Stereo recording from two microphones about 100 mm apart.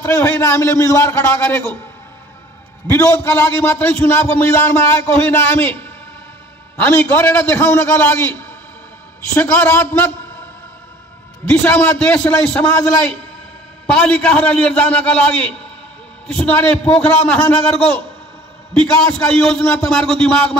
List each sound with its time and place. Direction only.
0.0 s a man's voice: 20° left (ahead or behind)
3.0 s a man's voice: 25° left (ahead or behind)
6.8 s a man's voice: 20° left (ahead or behind)
11.4 s a man's voice: 15° left (ahead or behind)
13.8 s a man's voice: 10° left (ahead or behind)
18.7 s a man's voice: 10° left (ahead or behind)